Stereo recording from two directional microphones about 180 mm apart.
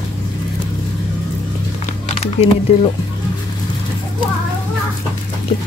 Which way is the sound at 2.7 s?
35° left (ahead or behind).